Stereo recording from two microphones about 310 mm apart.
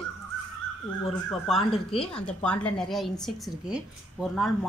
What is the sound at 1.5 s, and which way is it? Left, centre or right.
Speech, centre.